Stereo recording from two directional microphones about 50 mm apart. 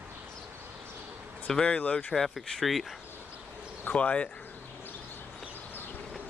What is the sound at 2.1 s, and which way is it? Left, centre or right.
Speech, centre.